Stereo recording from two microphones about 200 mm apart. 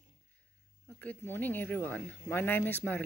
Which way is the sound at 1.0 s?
10° left (ahead or behind).